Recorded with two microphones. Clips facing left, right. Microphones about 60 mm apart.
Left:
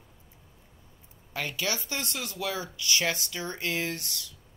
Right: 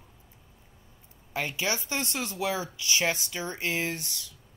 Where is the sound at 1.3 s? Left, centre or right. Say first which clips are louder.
Right 2 dB; right.